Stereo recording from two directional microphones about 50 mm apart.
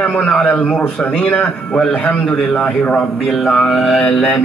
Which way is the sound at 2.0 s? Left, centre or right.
Left.